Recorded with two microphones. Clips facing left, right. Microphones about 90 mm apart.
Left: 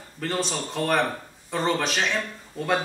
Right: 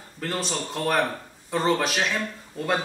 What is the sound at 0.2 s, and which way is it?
A man's voice, centre (ahead or behind).